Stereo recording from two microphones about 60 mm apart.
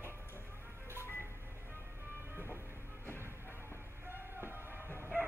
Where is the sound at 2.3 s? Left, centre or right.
Right.